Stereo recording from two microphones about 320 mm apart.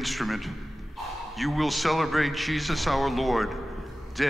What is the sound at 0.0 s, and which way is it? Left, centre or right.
A man's voice, centre.